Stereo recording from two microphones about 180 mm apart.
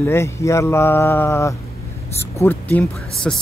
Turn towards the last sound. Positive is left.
turn(degrees=10)  # may be behind; listen again after turning